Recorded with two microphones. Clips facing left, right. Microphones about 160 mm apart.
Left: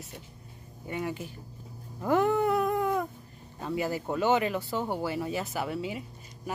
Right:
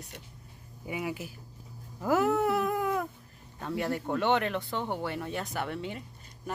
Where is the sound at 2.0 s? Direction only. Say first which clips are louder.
Left 1 dB; 5° right (ahead or behind).